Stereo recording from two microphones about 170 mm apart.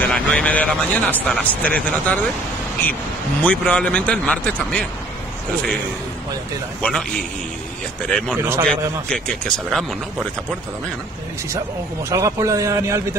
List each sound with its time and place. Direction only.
0.0 s speech: 10° left (ahead or behind)
3.4 s speech: 5° left (ahead or behind)
6.8 s speech: 5° left (ahead or behind)
8.4 s a man's voice: 15° right (ahead or behind)
8.6 s speech: 5° left (ahead or behind)
12.1 s a man's voice: 20° right (ahead or behind)